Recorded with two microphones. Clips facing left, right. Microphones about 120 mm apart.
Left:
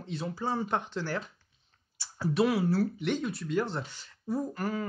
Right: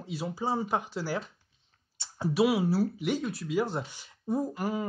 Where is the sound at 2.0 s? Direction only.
25° right (ahead or behind).